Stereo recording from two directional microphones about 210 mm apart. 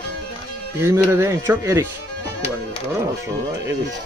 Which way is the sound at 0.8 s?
10° right (ahead or behind).